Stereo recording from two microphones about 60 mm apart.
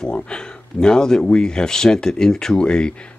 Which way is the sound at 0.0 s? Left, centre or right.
Centre.